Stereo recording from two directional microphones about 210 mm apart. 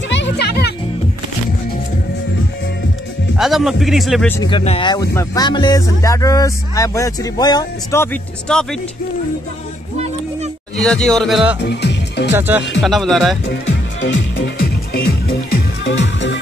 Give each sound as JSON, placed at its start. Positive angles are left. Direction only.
{"t": 0.1, "sound": "music", "side_deg": 55}
{"t": 3.3, "sound": "a man's voice", "side_deg": 0}
{"t": 4.4, "sound": "speech", "side_deg": 25}
{"t": 10.8, "sound": "a man's voice", "side_deg": 5}
{"t": 11.6, "sound": "music", "side_deg": 55}
{"t": 12.4, "sound": "a man's voice", "side_deg": -5}
{"t": 13.5, "sound": "music", "side_deg": 55}
{"t": 15.8, "sound": "music", "side_deg": 60}